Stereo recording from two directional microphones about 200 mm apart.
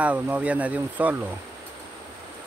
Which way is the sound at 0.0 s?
10° right (ahead or behind).